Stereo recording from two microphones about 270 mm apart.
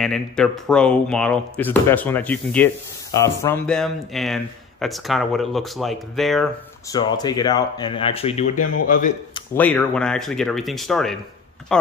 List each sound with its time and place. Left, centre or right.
0.0 s speech: centre
6.9 s speech: centre
9.3 s speech: centre